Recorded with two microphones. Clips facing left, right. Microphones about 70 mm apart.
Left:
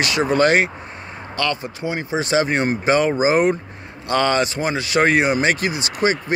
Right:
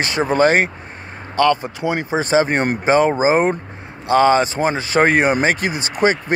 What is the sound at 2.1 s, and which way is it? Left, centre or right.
Speech, right.